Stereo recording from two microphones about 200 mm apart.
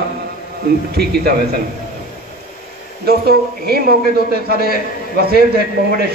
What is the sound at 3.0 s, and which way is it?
A man's voice, 50° right (ahead or behind).